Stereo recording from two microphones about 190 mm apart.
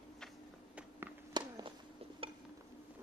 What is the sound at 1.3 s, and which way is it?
Walk, 25° right (ahead or behind).